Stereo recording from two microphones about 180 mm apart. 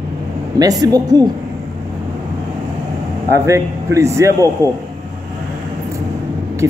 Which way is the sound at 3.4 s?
15° right (ahead or behind).